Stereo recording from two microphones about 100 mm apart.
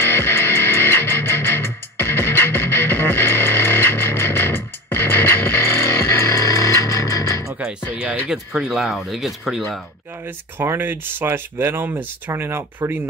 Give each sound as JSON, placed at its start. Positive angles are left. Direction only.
{"t": 0.0, "sound": "music", "side_deg": 25}
{"t": 8.0, "sound": "speech", "side_deg": -10}
{"t": 10.6, "sound": "speech", "side_deg": -20}